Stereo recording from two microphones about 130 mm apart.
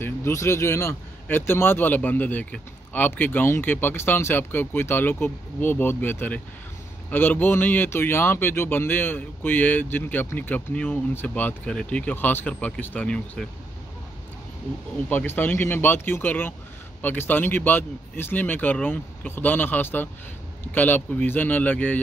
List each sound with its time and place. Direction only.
0.0 s speech: 20° left (ahead or behind)
15.0 s speech: 15° left (ahead or behind)